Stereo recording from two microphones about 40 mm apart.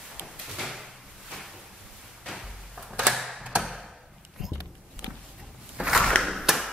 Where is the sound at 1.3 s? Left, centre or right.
Centre.